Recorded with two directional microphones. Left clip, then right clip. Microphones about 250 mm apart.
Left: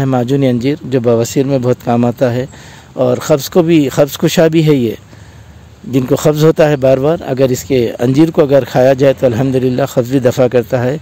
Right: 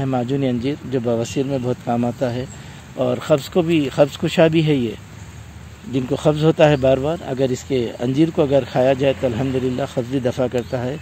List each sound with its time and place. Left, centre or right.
0.0 s speech: left
5.9 s speech: left